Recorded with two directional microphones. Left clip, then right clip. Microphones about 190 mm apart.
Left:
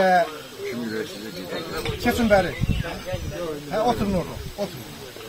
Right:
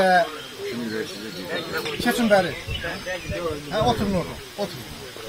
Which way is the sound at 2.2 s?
10° left (ahead or behind).